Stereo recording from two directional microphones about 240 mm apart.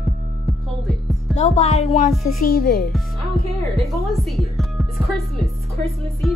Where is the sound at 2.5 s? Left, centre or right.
Left.